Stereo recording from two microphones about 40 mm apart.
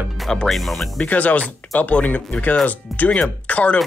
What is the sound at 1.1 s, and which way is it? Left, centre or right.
Speech, left.